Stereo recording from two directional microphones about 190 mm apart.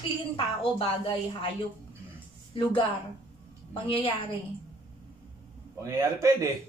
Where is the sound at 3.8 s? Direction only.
30° left (ahead or behind).